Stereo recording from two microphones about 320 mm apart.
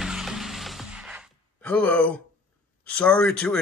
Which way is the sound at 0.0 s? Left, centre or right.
Centre.